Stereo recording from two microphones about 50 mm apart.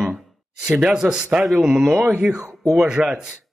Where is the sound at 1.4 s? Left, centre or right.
Centre.